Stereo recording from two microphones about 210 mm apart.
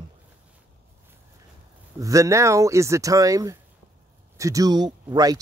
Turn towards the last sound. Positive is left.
turn(degrees=-20)  # may be behind; listen again after turning